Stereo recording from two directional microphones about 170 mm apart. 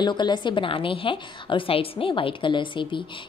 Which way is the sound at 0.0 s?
25° left (ahead or behind).